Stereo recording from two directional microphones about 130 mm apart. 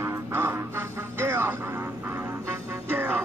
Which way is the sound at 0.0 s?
20° right (ahead or behind).